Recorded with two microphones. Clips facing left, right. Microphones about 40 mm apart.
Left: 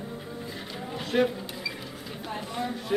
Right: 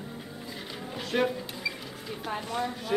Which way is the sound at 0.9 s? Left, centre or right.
Centre.